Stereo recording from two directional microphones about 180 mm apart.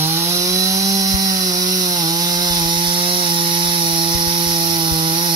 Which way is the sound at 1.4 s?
20° right (ahead or behind).